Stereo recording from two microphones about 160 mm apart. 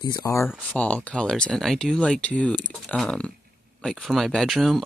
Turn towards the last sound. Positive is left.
turn(degrees=0)  # may be behind; listen again after turning